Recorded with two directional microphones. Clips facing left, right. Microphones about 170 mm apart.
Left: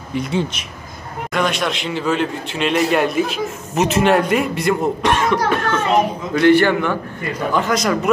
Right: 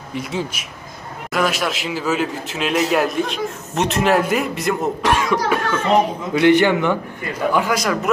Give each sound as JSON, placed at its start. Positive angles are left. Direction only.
{"t": 0.1, "sound": "a man's voice", "side_deg": 0}